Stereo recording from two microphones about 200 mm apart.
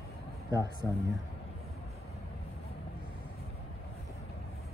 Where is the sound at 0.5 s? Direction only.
20° right (ahead or behind).